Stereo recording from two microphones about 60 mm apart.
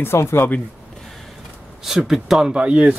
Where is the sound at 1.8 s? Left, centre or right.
Centre.